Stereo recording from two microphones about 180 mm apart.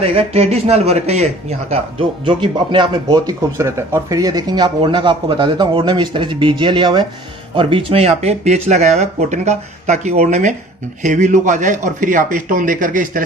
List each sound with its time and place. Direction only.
0.0 s speech: 30° right (ahead or behind); by 13.2 s 50° right (ahead or behind)